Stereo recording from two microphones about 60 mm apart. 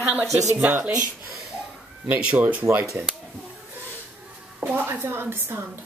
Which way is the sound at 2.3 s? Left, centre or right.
Right.